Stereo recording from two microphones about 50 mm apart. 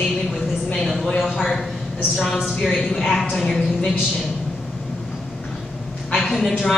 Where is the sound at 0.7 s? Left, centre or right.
Centre.